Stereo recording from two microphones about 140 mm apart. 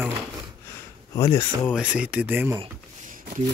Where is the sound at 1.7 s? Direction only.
10° right (ahead or behind).